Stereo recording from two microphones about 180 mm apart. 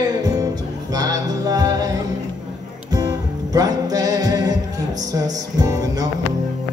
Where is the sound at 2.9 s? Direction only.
20° right (ahead or behind).